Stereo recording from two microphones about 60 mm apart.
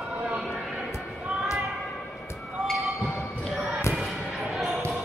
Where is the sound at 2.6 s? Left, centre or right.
Centre.